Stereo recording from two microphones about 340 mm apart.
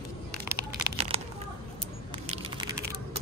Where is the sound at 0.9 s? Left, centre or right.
Centre.